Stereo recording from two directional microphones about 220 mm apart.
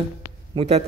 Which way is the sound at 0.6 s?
30° right (ahead or behind).